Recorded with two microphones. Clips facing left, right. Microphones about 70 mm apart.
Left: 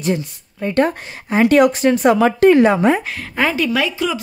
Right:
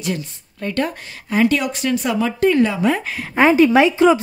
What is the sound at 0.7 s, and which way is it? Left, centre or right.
Speech, left.